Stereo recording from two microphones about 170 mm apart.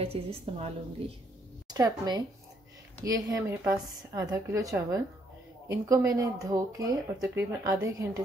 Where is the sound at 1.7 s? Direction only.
20° right (ahead or behind).